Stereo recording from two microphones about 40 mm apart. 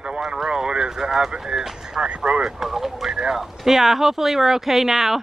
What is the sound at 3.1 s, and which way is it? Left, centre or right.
Speech, centre.